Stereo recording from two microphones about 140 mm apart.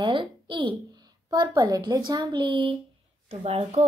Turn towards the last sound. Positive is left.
turn(degrees=-45)  # may be behind; listen again after turning